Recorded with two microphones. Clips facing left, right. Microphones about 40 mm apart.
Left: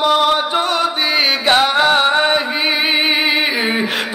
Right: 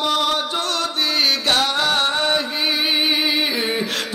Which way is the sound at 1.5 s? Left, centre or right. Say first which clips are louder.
Left 9 dB; left.